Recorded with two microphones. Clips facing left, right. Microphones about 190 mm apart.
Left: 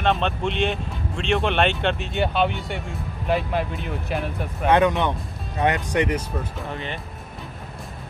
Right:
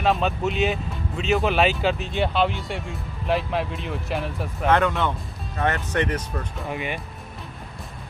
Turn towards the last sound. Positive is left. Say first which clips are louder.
# right 2 dB
turn(degrees=-10)  # may be behind; listen again after turning